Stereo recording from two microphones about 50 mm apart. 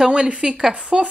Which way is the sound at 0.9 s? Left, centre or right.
Centre.